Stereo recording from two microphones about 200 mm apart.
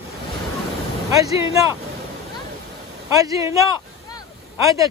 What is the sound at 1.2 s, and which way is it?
Speech, 15° right (ahead or behind).